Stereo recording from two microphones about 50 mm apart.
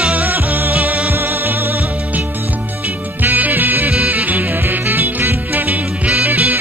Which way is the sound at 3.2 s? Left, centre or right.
Right.